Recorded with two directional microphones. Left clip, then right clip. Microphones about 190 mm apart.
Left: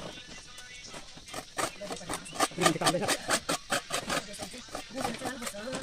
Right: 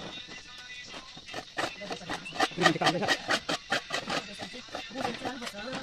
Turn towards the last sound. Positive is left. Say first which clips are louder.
# right 1 dB
turn(degrees=0)  # may be behind; listen again after turning